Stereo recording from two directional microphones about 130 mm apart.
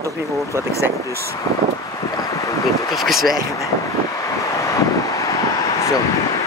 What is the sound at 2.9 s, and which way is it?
Speech, centre (ahead or behind).